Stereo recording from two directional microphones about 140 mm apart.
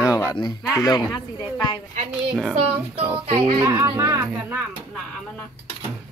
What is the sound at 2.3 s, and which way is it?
Speech, 5° right (ahead or behind).